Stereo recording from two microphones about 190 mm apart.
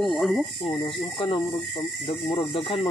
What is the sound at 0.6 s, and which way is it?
Speech, 25° left (ahead or behind).